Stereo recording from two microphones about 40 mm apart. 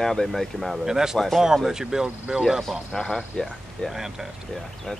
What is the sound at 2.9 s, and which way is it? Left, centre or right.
Speech, centre.